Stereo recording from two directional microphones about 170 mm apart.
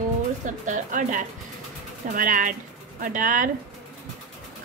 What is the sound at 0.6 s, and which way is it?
Speech, 50° right (ahead or behind).